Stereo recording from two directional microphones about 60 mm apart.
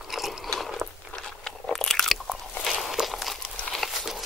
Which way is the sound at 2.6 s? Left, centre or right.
Centre.